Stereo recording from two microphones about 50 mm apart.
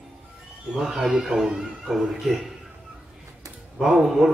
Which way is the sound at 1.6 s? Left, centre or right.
Centre.